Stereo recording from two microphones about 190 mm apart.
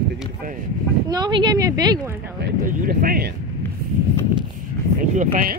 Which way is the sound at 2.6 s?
50° right (ahead or behind).